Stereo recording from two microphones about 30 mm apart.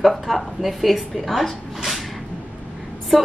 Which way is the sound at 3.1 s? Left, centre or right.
Centre.